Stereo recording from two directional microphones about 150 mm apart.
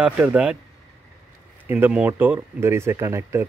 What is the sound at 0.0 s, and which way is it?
Speech, 10° right (ahead or behind).